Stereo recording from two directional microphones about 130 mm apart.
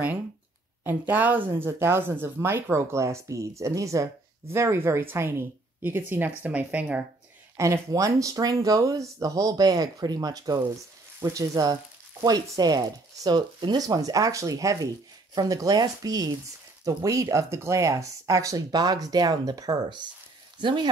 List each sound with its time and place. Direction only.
0.8 s speech: 15° right (ahead or behind)
7.5 s speech: 25° right (ahead or behind)